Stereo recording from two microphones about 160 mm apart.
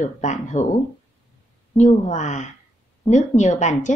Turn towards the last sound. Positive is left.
turn(degrees=50)  # may be behind; listen again after turning